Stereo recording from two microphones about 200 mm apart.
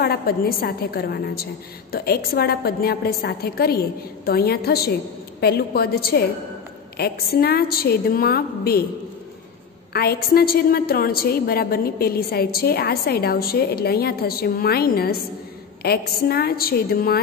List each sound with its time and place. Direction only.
0.0 s a woman's voice: 50° left (ahead or behind)
9.9 s a woman's voice: 50° left (ahead or behind)